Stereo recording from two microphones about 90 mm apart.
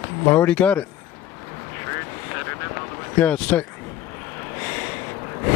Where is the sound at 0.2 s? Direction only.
20° left (ahead or behind).